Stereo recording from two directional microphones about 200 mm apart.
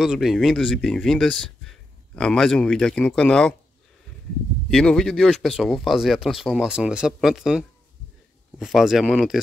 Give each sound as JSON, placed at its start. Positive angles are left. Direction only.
{"t": 0.0, "sound": "speech", "side_deg": 0}
{"t": 4.6, "sound": "speech", "side_deg": 5}